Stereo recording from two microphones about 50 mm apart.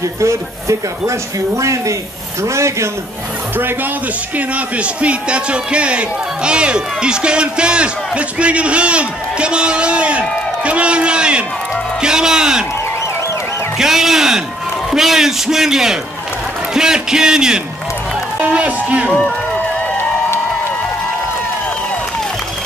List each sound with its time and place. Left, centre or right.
0.2 s speech: right
2.4 s a man's voice: right
4.4 s a man's voice: right
13.7 s a man's voice: centre
18.4 s a man's voice: right